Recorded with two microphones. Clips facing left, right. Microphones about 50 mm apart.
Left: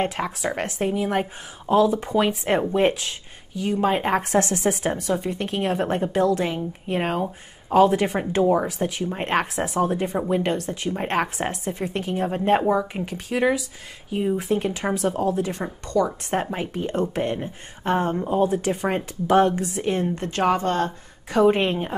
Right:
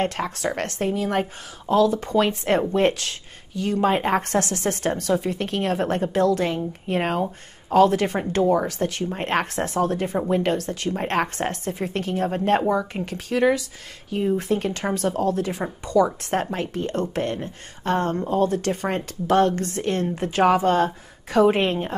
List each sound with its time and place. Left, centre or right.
0.0 s speech: centre
4.4 s a woman's voice: left
4.6 s speech: centre
20.2 s speech: centre